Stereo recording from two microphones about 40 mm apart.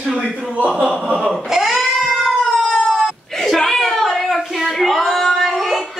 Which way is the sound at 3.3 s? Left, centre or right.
Centre.